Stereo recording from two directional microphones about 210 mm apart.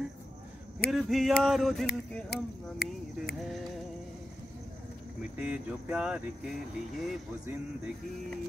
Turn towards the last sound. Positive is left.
turn(degrees=-5)  # may be behind; listen again after turning